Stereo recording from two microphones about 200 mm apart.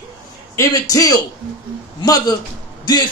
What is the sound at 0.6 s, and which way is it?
A man's voice, 15° left (ahead or behind).